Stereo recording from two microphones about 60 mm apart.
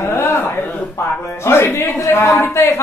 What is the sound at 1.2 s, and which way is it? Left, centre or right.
Speech, left.